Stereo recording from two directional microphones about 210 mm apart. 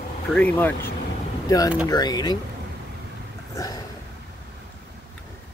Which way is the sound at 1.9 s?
20° left (ahead or behind).